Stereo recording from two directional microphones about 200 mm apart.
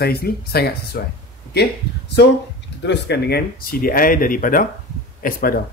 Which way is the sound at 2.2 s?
55° left (ahead or behind).